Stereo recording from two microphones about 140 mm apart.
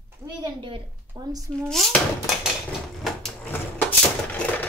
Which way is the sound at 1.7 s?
Centre (ahead or behind).